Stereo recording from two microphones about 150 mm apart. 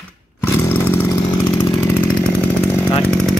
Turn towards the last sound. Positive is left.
turn(degrees=5)  # may be behind; listen again after turning